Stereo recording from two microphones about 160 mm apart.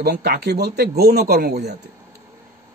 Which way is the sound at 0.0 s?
90° right.